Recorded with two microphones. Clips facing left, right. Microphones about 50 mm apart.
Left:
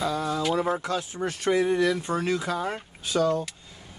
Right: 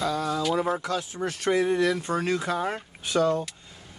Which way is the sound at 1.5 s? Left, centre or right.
Centre.